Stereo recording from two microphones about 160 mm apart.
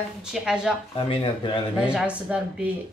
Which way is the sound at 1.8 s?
5° right (ahead or behind).